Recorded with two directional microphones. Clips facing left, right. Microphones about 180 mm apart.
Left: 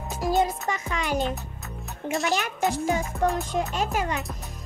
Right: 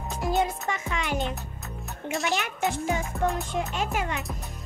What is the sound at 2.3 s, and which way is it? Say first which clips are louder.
Speech: left 2 dB; 40° left (ahead or behind).